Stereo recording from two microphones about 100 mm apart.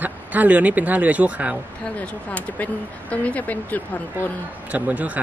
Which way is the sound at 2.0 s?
15° left (ahead or behind).